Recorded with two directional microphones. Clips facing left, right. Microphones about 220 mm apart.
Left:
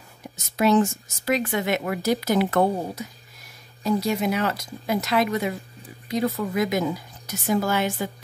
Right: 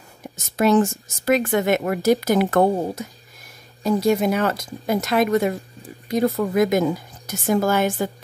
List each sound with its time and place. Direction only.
0.6 s a woman's voice: 50° right (ahead or behind)